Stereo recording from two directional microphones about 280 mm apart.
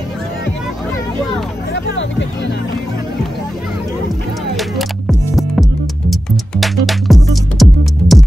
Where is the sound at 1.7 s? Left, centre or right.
Left.